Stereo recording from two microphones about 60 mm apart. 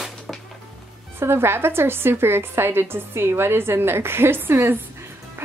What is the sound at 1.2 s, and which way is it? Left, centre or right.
A woman's voice, right.